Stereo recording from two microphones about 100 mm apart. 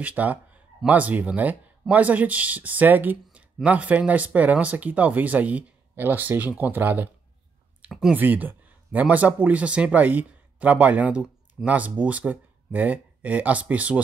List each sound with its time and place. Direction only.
0.0 s speech: 15° right (ahead or behind)
8.1 s speech: 15° right (ahead or behind)